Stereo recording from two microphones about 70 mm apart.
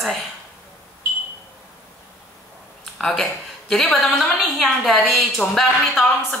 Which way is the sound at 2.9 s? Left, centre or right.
Centre.